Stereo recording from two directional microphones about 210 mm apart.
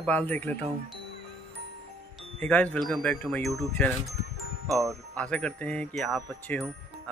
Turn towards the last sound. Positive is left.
turn(degrees=5)  # may be behind; listen again after turning